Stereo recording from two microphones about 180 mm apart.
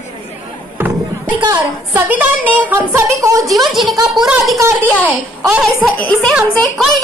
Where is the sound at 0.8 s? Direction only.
10° right (ahead or behind).